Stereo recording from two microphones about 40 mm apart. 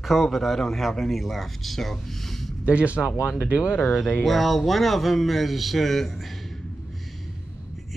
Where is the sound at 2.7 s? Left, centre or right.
Right.